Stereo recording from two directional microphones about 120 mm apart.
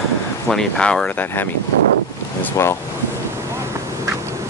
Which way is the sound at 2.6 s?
25° left (ahead or behind).